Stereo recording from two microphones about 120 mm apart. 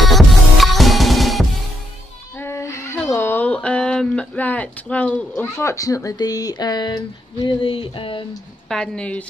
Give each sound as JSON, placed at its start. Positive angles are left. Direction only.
{"t": 0.0, "sound": "music", "side_deg": 0}
{"t": 2.3, "sound": "music", "side_deg": 20}
{"t": 3.1, "sound": "speech", "side_deg": 20}
{"t": 7.6, "sound": "a sound", "side_deg": 50}
{"t": 8.6, "sound": "a woman's voice", "side_deg": 5}